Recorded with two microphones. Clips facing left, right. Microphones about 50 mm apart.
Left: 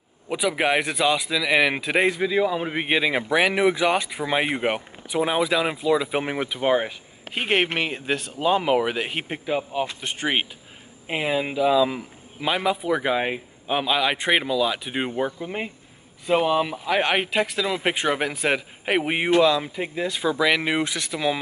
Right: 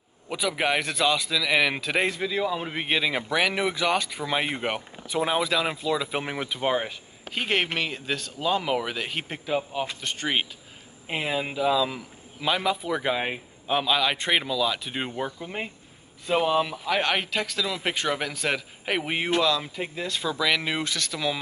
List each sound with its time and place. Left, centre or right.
0.3 s a man's voice: centre
9.5 s a man's voice: centre
11.1 s a man's voice: centre